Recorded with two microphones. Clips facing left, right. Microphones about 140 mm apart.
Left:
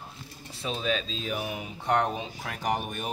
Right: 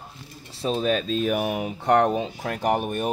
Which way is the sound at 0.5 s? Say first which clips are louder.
Right 7 dB; 40° right (ahead or behind).